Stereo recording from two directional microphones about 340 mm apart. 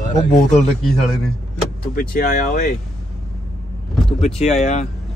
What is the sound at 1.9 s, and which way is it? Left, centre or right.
Speech, left.